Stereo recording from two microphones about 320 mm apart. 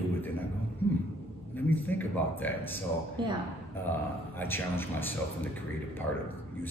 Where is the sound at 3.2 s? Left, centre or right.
Centre.